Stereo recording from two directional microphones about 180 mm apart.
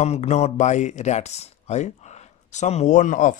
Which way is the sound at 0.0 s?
40° left (ahead or behind).